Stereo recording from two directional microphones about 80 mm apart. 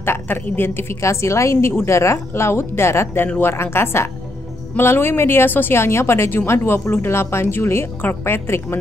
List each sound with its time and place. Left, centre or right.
0.0 s a woman's voice: left